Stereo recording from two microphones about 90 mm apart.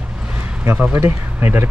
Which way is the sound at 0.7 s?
20° right (ahead or behind).